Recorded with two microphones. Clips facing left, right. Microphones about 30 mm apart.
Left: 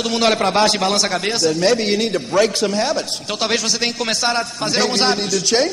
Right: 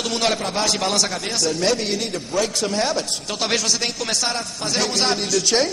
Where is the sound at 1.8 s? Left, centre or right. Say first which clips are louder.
Left 6 dB; left.